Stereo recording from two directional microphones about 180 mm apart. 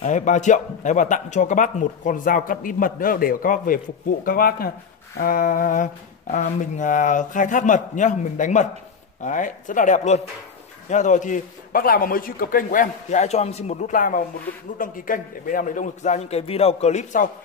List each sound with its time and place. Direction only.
0.0 s a man's voice: 45° left (ahead or behind)